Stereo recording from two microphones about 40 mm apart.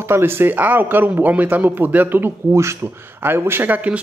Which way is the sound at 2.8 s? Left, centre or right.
Right.